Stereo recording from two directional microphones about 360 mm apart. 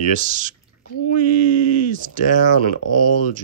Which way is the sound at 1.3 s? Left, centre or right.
Right.